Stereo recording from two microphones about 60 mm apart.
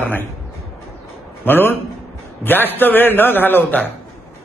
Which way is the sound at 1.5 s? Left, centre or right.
Left.